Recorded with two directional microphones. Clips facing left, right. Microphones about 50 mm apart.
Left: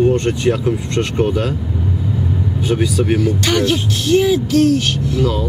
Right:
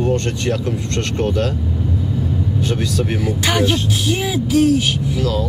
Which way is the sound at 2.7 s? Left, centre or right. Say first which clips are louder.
Left 7 dB; centre.